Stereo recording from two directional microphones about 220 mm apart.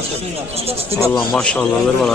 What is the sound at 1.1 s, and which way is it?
Speech, 5° left (ahead or behind).